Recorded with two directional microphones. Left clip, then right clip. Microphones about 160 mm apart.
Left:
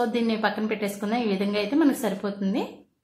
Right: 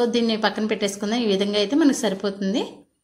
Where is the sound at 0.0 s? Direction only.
20° right (ahead or behind).